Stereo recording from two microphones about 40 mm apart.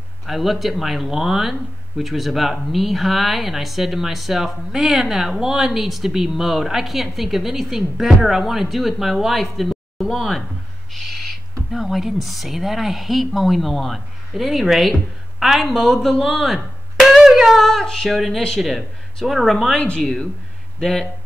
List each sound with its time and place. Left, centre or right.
0.3 s speech: centre
11.0 s speech: centre
17.1 s a sound: centre
17.6 s a sound: centre
18.0 s speech: centre
20.8 s speech: centre